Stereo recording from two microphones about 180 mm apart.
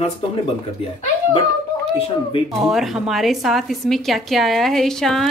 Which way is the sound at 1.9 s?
30° left (ahead or behind).